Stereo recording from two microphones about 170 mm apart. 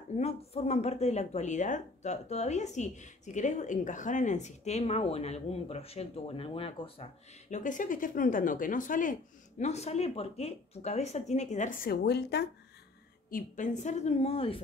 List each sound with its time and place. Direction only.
0.2 s speech: 40° left (ahead or behind)
7.4 s speech: 45° left (ahead or behind); by 12.4 s 75° left (ahead or behind)
13.3 s speech: 45° left (ahead or behind)